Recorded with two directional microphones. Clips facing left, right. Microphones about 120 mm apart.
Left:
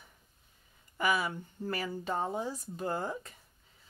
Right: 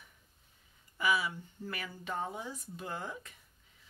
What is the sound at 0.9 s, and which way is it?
Speech, 50° left (ahead or behind).